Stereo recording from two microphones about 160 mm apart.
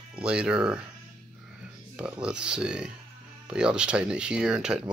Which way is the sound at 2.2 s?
5° right (ahead or behind).